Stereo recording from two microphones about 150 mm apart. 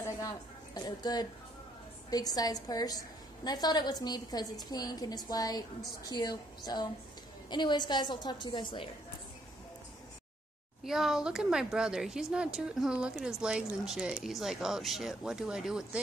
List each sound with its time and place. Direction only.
0.7 s a woman's voice: 25° left (ahead or behind)
10.8 s speech: centre (ahead or behind)